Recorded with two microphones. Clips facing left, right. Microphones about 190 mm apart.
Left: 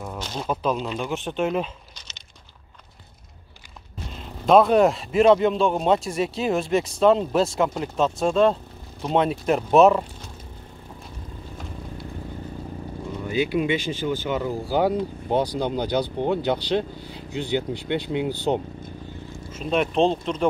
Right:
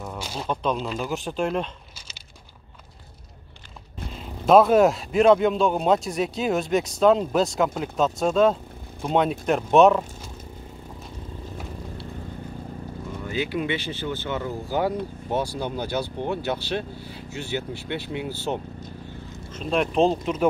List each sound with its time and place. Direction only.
0.2 s a sound: 10° right (ahead or behind)
0.5 s speech: 5° left (ahead or behind)
4.1 s speech: centre (ahead or behind)
13.3 s speech: 15° left (ahead or behind)
19.5 s speech: centre (ahead or behind)